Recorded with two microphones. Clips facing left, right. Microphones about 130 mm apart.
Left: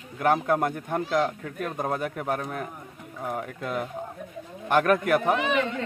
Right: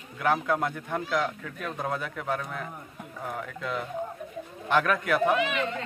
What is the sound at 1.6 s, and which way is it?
A man's voice, 45° left (ahead or behind).